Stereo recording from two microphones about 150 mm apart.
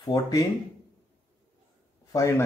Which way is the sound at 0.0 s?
25° left (ahead or behind).